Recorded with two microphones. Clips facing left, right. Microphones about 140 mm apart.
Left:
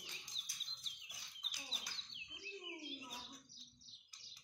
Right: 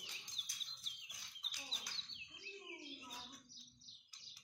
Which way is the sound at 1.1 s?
5° left (ahead or behind).